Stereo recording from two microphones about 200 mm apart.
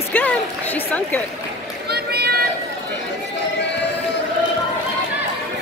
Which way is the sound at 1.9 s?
50° right (ahead or behind).